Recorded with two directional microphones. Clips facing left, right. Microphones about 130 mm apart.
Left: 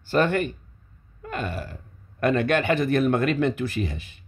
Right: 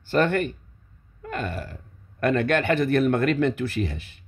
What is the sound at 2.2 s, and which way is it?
Speech, 15° left (ahead or behind).